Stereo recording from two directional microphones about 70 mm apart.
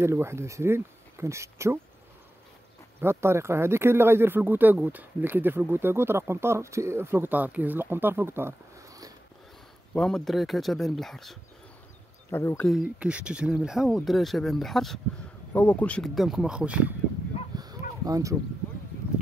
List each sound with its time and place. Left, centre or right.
0.0 s speech: right
3.0 s speech: right
9.9 s speech: centre
12.3 s speech: left
12.8 s speech: centre
15.5 s speech: left
16.0 s speech: centre
17.6 s a sound: right